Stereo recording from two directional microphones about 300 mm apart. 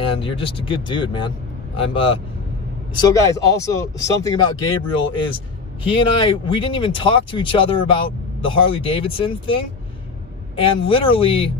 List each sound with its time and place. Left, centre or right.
0.2 s speech: centre